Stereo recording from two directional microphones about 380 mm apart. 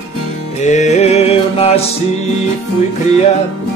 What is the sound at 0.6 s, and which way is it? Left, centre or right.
Music, centre.